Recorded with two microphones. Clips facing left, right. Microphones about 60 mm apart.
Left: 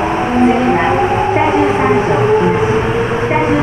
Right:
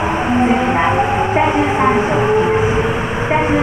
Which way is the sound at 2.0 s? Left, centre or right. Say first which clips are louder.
Left 2 dB; centre.